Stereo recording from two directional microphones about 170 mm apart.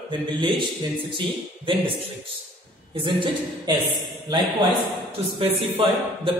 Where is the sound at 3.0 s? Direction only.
30° right (ahead or behind).